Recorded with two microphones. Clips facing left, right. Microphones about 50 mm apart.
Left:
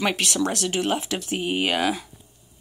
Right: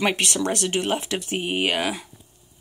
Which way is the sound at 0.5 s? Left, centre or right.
Right.